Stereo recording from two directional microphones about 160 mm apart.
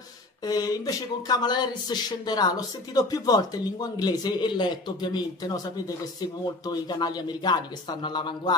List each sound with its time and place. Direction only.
0.4 s speech: 25° left (ahead or behind)
6.6 s speech: 25° left (ahead or behind)